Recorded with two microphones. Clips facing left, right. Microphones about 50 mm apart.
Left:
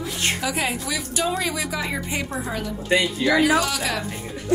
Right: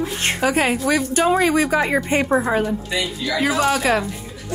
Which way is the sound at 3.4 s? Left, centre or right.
Right.